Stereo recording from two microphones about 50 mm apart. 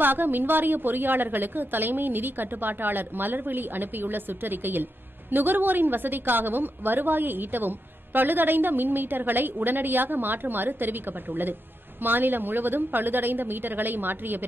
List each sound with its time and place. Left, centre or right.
0.0 s a woman's voice: right